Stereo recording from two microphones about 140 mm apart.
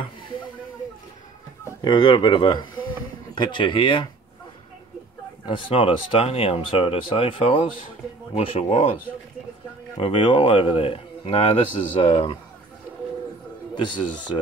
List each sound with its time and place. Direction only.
1.8 s speech: 35° left (ahead or behind)
5.4 s speech: 40° left (ahead or behind)
9.9 s speech: 40° left (ahead or behind)